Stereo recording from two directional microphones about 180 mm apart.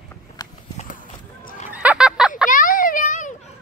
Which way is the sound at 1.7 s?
5° right (ahead or behind).